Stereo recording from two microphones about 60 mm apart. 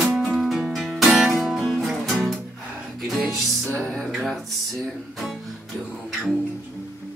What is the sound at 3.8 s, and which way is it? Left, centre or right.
Music, centre.